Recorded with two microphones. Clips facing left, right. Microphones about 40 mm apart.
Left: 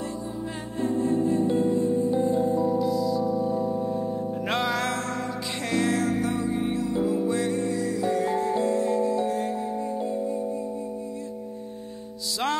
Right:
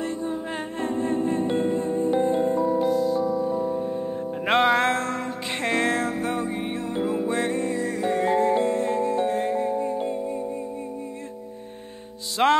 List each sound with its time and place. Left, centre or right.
0.0 s music: right
3.3 s music: right
12.4 s music: right